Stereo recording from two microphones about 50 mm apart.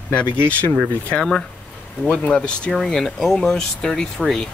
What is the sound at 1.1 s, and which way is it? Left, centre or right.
Speech, left.